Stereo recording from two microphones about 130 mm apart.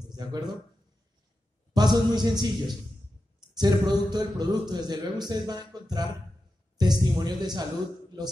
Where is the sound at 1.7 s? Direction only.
30° right (ahead or behind).